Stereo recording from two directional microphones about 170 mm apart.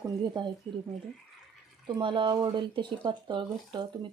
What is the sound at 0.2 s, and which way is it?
Speech, 25° right (ahead or behind).